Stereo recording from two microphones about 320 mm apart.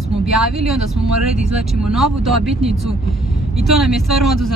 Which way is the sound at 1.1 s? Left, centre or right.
Right.